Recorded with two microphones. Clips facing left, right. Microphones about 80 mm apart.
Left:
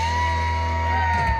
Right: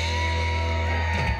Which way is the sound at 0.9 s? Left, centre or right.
Left.